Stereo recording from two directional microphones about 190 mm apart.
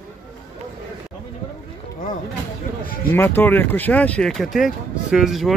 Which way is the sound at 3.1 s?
10° left (ahead or behind).